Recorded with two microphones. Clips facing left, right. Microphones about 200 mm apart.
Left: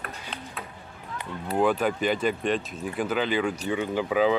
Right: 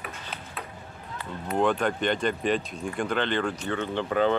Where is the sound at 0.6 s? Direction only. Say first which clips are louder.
Right 3 dB; centre (ahead or behind).